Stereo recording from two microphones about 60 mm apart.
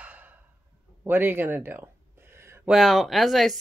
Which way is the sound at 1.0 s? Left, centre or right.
Right.